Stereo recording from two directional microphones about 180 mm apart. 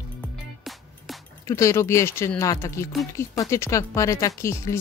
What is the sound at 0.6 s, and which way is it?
Music, centre (ahead or behind).